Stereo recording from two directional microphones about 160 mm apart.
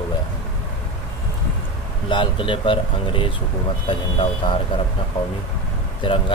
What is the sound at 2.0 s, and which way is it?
Speech, 30° left (ahead or behind).